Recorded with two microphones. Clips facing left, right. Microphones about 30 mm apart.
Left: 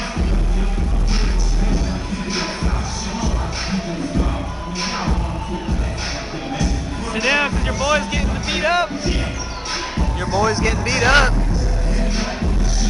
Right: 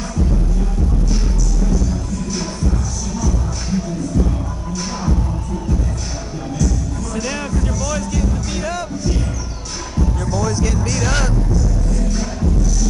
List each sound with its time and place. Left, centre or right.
1.6 s music: left
3.7 s a sound: left
7.2 s music: left